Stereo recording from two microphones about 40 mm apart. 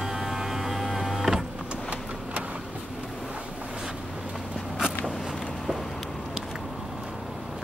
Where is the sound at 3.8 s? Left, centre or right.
Centre.